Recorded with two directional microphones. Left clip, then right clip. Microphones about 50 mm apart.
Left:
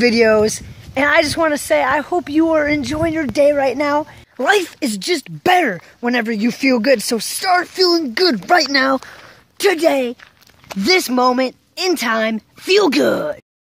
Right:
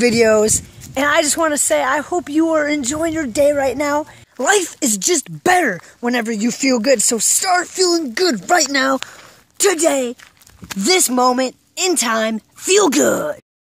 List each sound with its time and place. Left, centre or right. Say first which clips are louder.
0.0 s speech: even; right
0.9 s speech: left 1 dB; right
2.4 s speech: left 1 dB; right
4.5 s speech: left 1 dB; right
4.7 s speech: right 2 dB; right
6.0 s speech: left 1 dB; right; by 8.4 s centre
8.4 s speech: left 1 dB; right
9.6 s speech: left 1 dB; right